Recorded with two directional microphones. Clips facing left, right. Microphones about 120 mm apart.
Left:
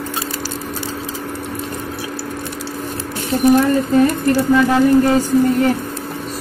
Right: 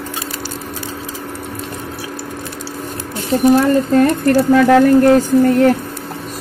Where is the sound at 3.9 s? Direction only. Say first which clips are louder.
Right 1 dB; 60° right (ahead or behind).